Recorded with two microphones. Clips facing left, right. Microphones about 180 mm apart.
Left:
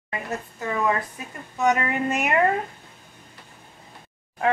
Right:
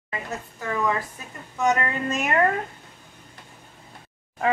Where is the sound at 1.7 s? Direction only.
15° left (ahead or behind).